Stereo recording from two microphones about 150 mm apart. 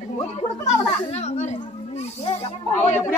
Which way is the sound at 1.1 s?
45° left (ahead or behind).